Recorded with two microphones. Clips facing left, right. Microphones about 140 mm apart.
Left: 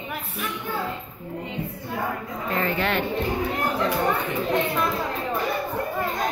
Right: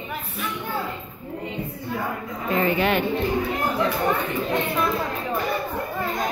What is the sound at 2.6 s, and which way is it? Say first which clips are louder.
Speech: right 4 dB; 15° right (ahead or behind).